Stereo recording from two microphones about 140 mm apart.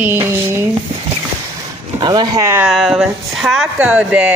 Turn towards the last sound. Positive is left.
turn(degrees=-10)  # may be behind; listen again after turning